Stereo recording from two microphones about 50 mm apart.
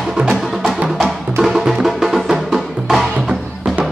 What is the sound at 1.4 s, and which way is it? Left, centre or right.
Music, centre.